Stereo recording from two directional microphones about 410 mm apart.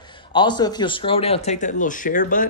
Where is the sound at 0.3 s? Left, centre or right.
Centre.